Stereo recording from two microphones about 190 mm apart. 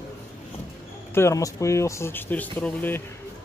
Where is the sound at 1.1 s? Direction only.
15° left (ahead or behind).